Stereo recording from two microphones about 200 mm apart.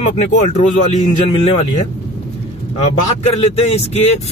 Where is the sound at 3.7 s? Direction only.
30° left (ahead or behind).